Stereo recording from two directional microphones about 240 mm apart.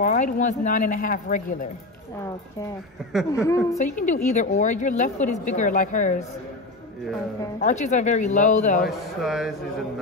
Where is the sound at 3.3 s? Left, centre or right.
Centre.